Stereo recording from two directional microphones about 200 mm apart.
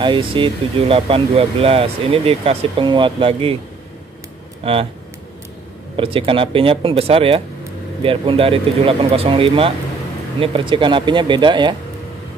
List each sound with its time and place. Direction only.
0.0 s speech: 25° right (ahead or behind)
4.6 s speech: 30° right (ahead or behind)
5.9 s speech: 25° right (ahead or behind)